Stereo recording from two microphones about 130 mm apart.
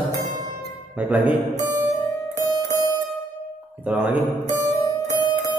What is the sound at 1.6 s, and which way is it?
Music, 25° right (ahead or behind).